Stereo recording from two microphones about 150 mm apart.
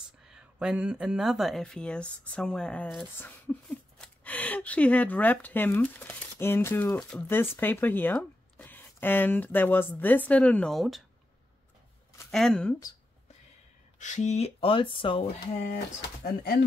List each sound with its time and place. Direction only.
0.3 s speech: 5° right (ahead or behind)
12.3 s speech: 5° left (ahead or behind)
13.9 s speech: 55° left (ahead or behind); by 15.2 s 35° left (ahead or behind)
15.6 s speech: 70° left (ahead or behind)